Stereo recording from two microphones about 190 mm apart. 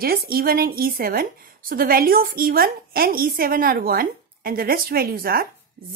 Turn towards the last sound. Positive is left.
turn(degrees=-50)  # may be behind; listen again after turning